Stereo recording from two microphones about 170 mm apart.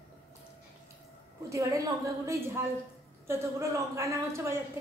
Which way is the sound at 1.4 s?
20° right (ahead or behind).